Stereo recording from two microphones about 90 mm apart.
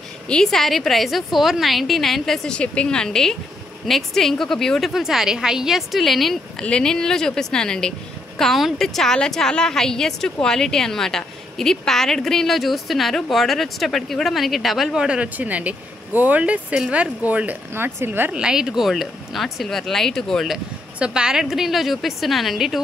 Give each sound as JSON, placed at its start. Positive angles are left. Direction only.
{"t": 0.3, "sound": "a woman's voice", "side_deg": 5}
{"t": 18.3, "sound": "a woman's voice", "side_deg": -5}